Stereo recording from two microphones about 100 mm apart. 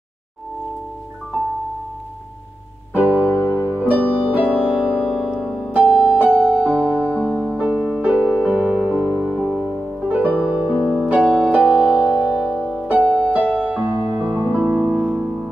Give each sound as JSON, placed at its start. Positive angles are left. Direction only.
{"t": 2.9, "sound": "music", "side_deg": -15}
{"t": 5.4, "sound": "music", "side_deg": 5}
{"t": 5.8, "sound": "music", "side_deg": -10}
{"t": 7.2, "sound": "music", "side_deg": 0}
{"t": 7.5, "sound": "music", "side_deg": -15}